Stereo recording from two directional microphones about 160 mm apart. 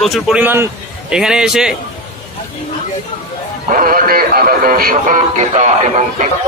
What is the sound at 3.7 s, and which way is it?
Speech, 60° right (ahead or behind).